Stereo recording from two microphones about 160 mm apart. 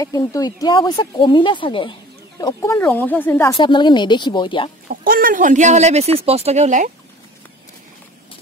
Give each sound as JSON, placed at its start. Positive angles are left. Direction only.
{"t": 0.0, "sound": "speech", "side_deg": 20}
{"t": 3.5, "sound": "speech", "side_deg": 30}
{"t": 4.8, "sound": "speech", "side_deg": -65}